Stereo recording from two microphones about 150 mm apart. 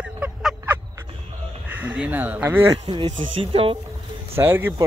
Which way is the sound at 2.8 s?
30° right (ahead or behind).